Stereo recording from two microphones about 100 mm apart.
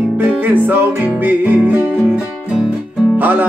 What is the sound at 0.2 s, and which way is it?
Music, 20° right (ahead or behind).